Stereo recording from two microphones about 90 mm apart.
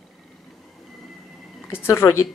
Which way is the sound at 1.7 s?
30° left (ahead or behind).